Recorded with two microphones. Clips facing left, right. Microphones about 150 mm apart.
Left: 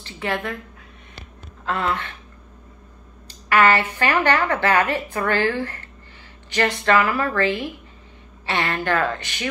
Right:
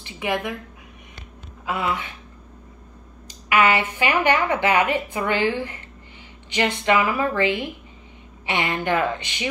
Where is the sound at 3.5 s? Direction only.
15° right (ahead or behind).